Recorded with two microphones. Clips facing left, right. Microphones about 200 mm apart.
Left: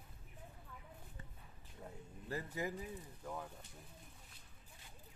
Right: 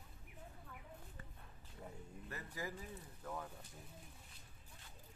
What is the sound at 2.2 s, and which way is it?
Speech, 25° left (ahead or behind).